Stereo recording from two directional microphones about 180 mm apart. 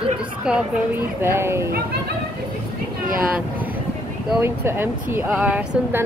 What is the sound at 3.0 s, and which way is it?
Speech, 50° right (ahead or behind).